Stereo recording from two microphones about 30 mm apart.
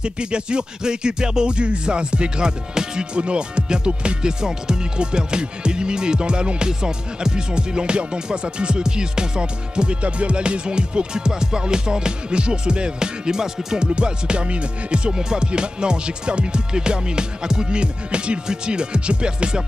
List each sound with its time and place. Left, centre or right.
0.0 s music: right
3.2 s music: right
10.0 s music: right; by 13.8 s centre
13.9 s music: right
15.0 s music: right